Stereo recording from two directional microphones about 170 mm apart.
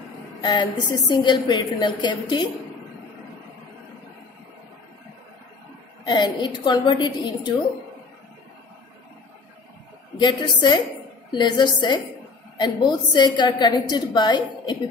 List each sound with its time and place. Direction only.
0.4 s a woman's voice: 25° left (ahead or behind)
6.0 s a woman's voice: 25° left (ahead or behind)
10.1 s a woman's voice: 25° left (ahead or behind)